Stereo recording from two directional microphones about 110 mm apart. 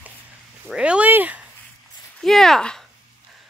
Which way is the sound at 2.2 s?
5° left (ahead or behind).